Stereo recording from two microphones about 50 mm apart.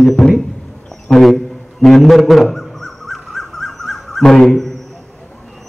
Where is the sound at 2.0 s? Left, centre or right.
Centre.